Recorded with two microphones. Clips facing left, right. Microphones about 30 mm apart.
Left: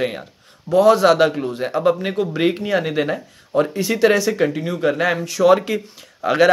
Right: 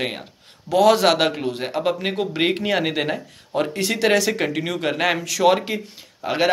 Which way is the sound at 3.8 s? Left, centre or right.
Right.